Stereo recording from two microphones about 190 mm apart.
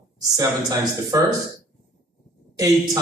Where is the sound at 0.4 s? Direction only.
15° right (ahead or behind).